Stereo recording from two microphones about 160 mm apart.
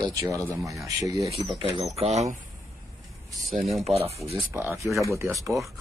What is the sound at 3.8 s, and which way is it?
Speech, 40° right (ahead or behind).